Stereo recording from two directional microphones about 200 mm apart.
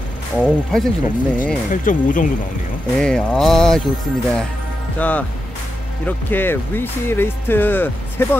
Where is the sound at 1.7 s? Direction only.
40° left (ahead or behind).